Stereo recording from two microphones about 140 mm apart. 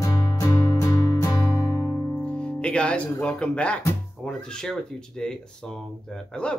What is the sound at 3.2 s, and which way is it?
Speech, 10° left (ahead or behind).